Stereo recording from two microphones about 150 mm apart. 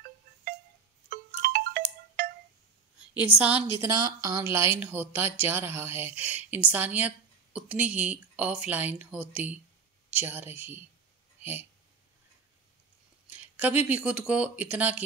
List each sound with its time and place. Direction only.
1.4 s ringtone: 75° right (ahead or behind)
3.0 s a woman's voice: 10° right (ahead or behind)
3.8 s a woman's voice: 25° right (ahead or behind)
13.3 s a woman's voice: 10° right (ahead or behind)